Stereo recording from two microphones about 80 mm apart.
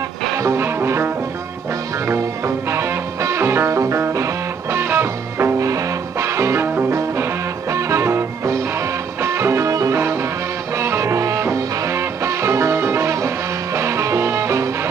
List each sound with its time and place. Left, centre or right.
0.4 s music: right
5.6 s music: right